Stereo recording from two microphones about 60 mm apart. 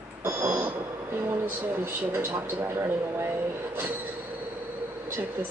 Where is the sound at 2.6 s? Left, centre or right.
Right.